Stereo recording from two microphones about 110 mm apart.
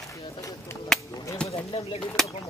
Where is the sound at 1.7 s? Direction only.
55° left (ahead or behind).